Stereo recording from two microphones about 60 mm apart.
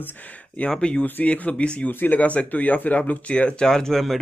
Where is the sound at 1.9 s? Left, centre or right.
Left.